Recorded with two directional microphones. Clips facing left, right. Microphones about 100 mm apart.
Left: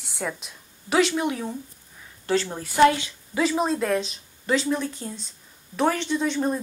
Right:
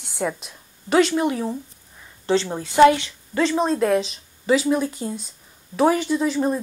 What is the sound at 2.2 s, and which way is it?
Speech, 25° right (ahead or behind).